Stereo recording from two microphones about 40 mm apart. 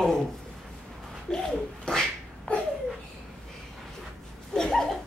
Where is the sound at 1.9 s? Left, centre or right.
Centre.